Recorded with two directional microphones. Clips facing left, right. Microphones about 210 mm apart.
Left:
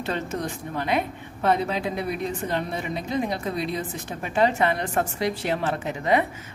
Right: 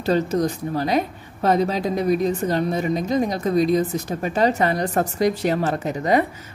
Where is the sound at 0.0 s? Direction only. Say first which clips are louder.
Right 8 dB; 40° right (ahead or behind).